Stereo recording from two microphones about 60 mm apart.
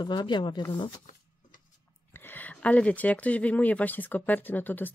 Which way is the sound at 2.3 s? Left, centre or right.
Left.